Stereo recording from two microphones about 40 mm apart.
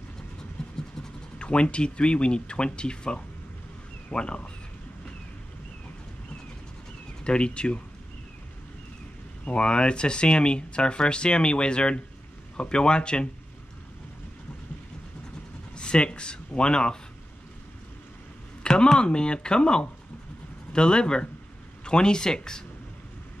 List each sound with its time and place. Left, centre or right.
0.6 s vehicle: centre
1.4 s speech: left
7.2 s speech: left
9.4 s speech: left
15.7 s speech: left
18.6 s speech: left